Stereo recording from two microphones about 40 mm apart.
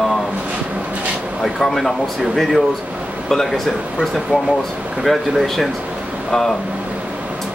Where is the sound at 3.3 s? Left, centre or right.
Centre.